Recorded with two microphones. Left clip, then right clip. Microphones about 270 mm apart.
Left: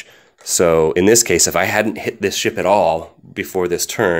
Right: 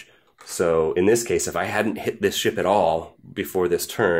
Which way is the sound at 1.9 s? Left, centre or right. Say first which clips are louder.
Left 3 dB; centre.